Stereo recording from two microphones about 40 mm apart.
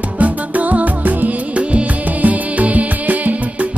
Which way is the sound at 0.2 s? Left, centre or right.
Right.